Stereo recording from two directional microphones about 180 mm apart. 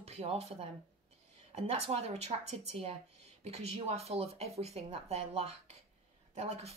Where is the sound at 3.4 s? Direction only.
35° right (ahead or behind).